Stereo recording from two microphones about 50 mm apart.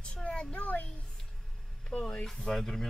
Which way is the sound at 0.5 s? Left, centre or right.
Left.